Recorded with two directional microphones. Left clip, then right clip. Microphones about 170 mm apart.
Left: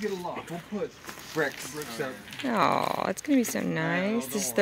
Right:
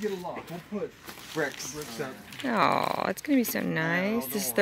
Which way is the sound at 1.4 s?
5° right (ahead or behind).